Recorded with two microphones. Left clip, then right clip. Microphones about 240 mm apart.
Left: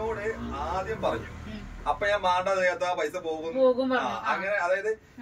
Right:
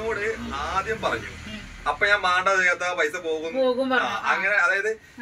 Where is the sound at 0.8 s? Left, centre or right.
Centre.